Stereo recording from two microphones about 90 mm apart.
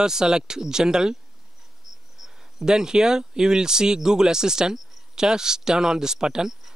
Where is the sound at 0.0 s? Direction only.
5° right (ahead or behind).